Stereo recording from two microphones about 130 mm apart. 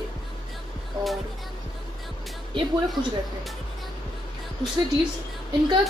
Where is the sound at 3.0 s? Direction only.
35° right (ahead or behind).